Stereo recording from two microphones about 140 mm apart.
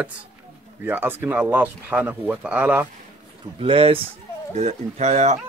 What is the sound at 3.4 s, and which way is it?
Speech, 40° right (ahead or behind).